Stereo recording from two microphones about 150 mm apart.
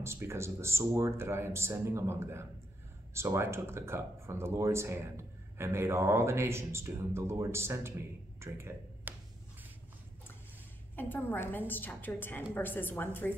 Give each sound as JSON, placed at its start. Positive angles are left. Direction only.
{"t": 0.0, "sound": "speech", "side_deg": -20}
{"t": 8.4, "sound": "a sound", "side_deg": -15}
{"t": 11.0, "sound": "a woman's voice", "side_deg": 15}